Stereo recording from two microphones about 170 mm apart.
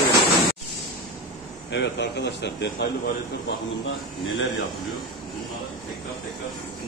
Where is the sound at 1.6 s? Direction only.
90° left.